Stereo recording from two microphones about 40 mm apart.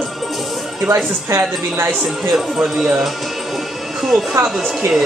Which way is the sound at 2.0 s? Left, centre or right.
Centre.